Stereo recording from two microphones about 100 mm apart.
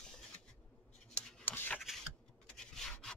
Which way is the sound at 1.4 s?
20° left (ahead or behind).